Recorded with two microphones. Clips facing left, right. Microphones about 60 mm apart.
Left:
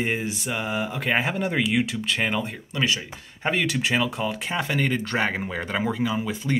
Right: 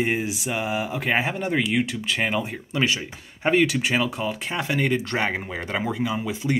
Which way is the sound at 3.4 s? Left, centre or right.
Centre.